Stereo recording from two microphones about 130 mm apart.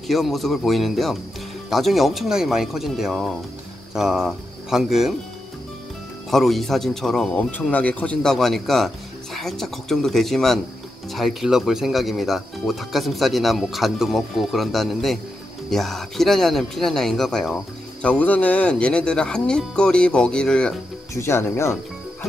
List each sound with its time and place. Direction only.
0.1 s speech: centre (ahead or behind)
6.3 s speech: centre (ahead or behind)
21.1 s speech: 20° left (ahead or behind)